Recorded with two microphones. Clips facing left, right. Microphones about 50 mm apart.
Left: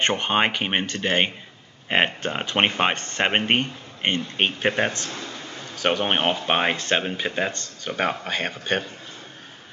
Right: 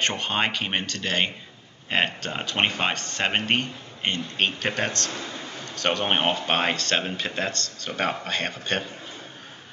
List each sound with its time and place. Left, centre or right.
0.0 s speech: left
5.1 s a sound: centre
5.8 s a man's voice: centre